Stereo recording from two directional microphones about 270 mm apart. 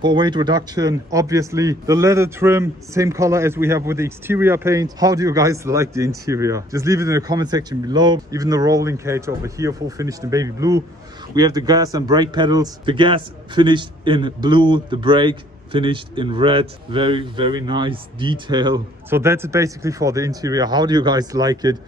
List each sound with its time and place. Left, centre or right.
0.0 s speech: centre